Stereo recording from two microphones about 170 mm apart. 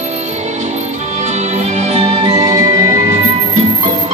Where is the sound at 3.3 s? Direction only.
35° right (ahead or behind).